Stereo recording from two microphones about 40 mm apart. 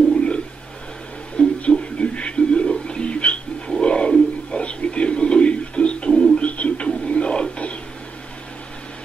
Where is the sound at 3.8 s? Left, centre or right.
Left.